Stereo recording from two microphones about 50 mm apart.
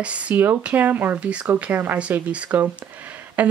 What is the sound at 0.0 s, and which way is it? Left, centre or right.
Speech, right.